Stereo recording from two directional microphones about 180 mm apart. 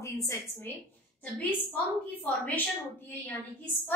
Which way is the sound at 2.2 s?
10° left (ahead or behind).